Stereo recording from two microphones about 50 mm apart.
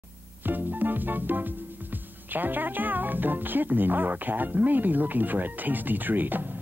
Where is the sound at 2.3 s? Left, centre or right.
Right.